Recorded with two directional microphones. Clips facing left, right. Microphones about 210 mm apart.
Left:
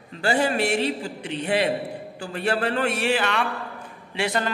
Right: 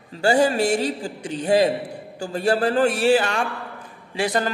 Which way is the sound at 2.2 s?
35° right (ahead or behind).